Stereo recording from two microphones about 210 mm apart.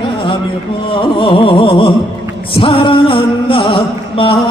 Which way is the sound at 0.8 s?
25° left (ahead or behind).